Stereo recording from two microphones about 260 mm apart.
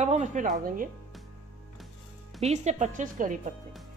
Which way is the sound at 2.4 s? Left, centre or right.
Right.